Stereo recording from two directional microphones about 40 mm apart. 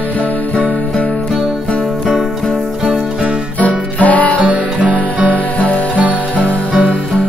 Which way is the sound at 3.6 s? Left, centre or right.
Left.